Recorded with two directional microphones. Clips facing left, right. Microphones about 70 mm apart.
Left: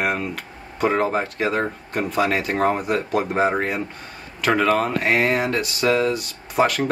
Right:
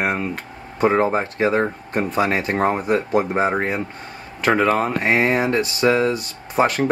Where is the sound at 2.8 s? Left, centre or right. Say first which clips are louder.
Right 3 dB; right.